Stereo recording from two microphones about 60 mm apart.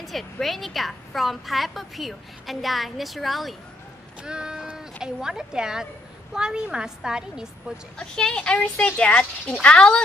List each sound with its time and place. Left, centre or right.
0.0 s a woman's voice: centre
4.2 s speech: centre
8.0 s speech: centre